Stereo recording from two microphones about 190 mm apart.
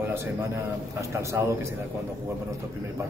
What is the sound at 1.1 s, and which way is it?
Speech, 15° right (ahead or behind).